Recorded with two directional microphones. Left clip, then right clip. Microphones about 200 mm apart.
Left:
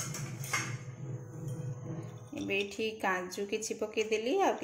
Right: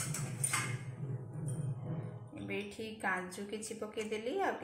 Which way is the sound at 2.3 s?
45° left (ahead or behind).